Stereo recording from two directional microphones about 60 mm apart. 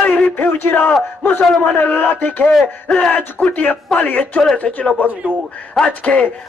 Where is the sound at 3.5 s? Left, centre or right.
Left.